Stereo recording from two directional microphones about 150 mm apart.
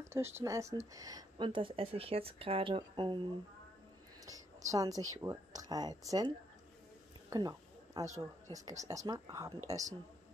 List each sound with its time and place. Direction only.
0.0 s speech: 20° right (ahead or behind); by 3.2 s 35° right (ahead or behind)
4.3 s speech: 25° right (ahead or behind)
7.2 s a sound: 25° right (ahead or behind)
8.5 s speech: 25° right (ahead or behind)